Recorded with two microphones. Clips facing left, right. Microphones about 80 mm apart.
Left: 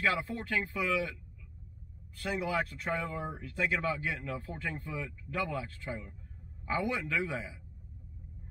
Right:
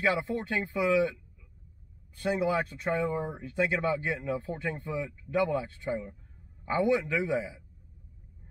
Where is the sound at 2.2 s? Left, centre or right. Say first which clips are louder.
Right 5 dB; right.